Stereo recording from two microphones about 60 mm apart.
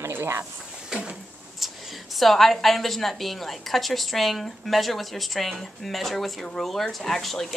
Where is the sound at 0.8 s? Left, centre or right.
Centre.